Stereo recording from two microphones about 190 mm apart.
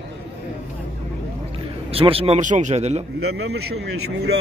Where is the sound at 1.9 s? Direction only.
30° right (ahead or behind).